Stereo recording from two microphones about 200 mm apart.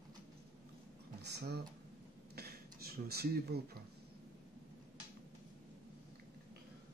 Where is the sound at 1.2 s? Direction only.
55° right (ahead or behind).